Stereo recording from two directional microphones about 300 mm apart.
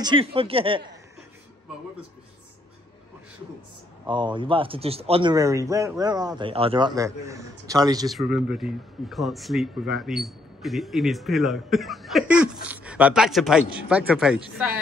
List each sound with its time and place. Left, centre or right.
0.0 s speech: centre
4.1 s speech: centre
8.1 s speech: centre